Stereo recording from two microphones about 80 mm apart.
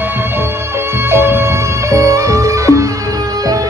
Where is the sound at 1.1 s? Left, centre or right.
Right.